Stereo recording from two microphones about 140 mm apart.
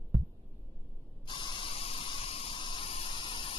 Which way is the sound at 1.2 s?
35° left (ahead or behind).